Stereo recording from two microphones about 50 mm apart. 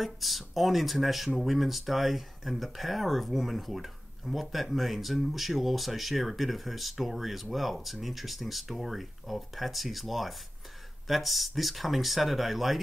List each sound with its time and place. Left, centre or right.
0.0 s speech: centre